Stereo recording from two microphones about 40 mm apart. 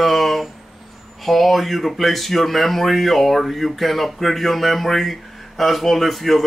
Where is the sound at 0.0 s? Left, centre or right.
Centre.